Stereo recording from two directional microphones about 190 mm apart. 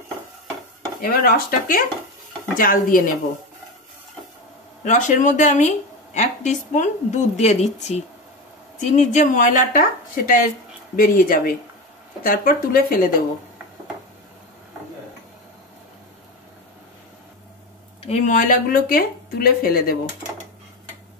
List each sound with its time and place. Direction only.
1.0 s speech: 50° left (ahead or behind)
4.8 s a woman's voice: 40° left (ahead or behind)
18.0 s speech: 35° left (ahead or behind); by 20.0 s 50° left (ahead or behind)